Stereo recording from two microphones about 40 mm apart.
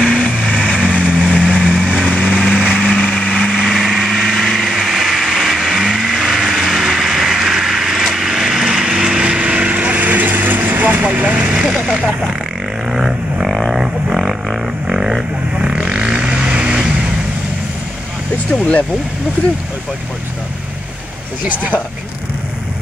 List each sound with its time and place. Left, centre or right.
0.0 s vehicle: centre
0.5 s vehicle: centre
2.5 s light engine: centre
2.9 s light engine: centre
3.6 s vehicle: centre; by 11.5 s right
11.5 s vehicle: right
12.9 s a sound: centre
15.0 s vehicle: centre
18.5 s vehicle: left